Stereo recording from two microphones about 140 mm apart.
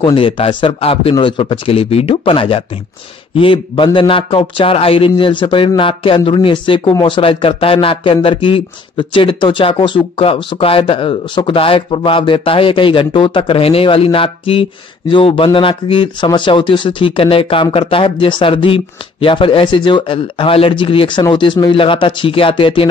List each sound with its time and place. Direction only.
0.0 s speech: 40° left (ahead or behind)